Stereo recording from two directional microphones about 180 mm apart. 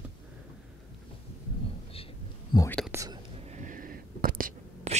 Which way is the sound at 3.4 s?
45° right (ahead or behind).